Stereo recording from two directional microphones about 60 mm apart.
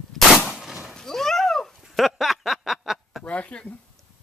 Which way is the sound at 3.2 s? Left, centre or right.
Left.